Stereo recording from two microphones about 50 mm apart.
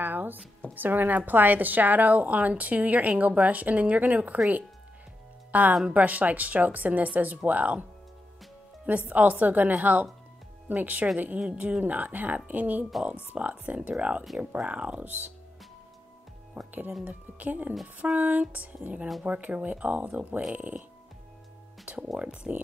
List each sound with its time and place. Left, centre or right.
0.0 s a sound: right
0.7 s a woman's voice: right
5.5 s a woman's voice: right
8.8 s a woman's voice: right
16.6 s a woman's voice: right
21.8 s speech: right